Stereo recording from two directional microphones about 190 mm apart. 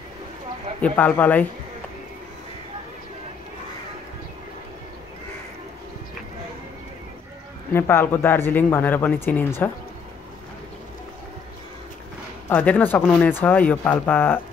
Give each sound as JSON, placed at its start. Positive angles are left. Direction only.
{"t": 0.7, "sound": "speech", "side_deg": 5}
{"t": 7.7, "sound": "speech", "side_deg": 10}
{"t": 12.4, "sound": "speech", "side_deg": 10}